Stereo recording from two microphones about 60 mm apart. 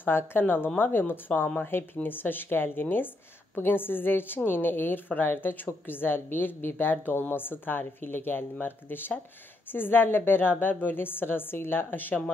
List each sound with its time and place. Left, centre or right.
0.0 s a woman's voice: left